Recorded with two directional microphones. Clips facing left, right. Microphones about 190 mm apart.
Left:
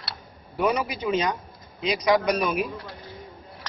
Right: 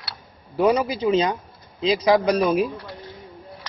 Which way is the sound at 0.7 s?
30° right (ahead or behind).